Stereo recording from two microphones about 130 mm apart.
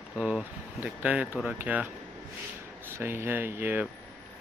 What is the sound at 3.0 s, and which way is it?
Speech, 15° right (ahead or behind).